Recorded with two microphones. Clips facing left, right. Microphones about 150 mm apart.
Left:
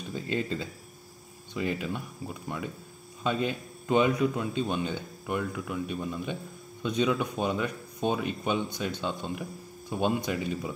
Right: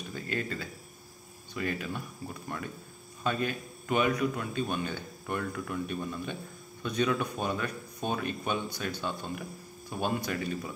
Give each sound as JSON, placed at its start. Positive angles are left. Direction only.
{"t": 0.1, "sound": "a man's voice", "side_deg": 20}